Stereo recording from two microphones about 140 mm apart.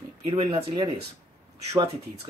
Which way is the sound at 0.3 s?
35° right (ahead or behind).